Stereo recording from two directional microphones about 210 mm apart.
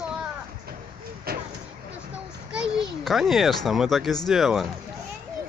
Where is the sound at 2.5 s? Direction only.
5° right (ahead or behind).